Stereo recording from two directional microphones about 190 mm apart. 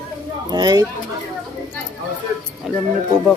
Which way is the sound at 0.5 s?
20° right (ahead or behind).